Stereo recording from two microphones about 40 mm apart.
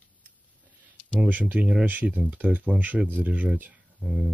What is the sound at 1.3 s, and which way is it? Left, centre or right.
Speech, right.